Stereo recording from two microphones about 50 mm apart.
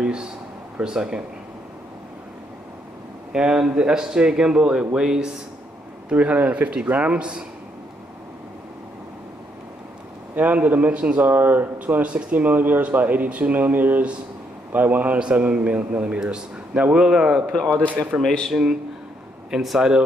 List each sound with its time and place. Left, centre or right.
0.0 s a sound: centre
0.7 s speech: centre
3.3 s speech: centre
6.0 s speech: right
10.3 s speech: right
11.2 s speech: right
12.0 s speech: right
15.1 s speech: right
16.2 s speech: centre
17.5 s a man's voice: centre
19.5 s speech: centre